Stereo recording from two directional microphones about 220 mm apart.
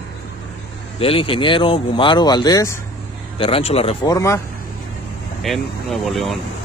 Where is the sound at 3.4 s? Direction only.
25° left (ahead or behind).